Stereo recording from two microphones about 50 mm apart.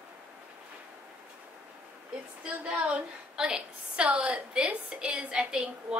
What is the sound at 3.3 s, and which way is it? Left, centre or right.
A woman's voice, centre.